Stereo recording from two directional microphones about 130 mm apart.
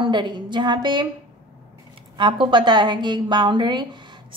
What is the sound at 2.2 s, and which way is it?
A woman's voice, 40° right (ahead or behind).